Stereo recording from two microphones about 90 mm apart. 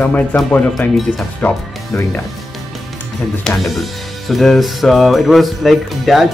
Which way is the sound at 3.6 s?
Centre (ahead or behind).